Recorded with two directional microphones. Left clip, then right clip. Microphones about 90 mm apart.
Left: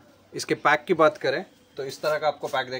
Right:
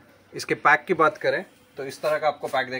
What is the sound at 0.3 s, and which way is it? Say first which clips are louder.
Speech: right 2 dB; 35° left (ahead or behind).